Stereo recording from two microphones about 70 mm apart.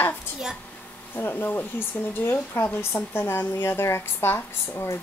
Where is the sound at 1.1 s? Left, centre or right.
Left.